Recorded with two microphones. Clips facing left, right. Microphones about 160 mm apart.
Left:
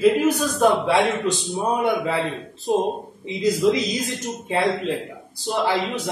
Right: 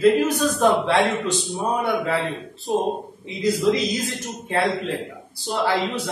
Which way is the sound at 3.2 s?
20° left (ahead or behind).